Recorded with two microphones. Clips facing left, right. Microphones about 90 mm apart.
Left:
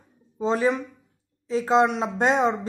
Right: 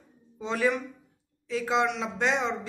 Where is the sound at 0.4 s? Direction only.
30° left (ahead or behind).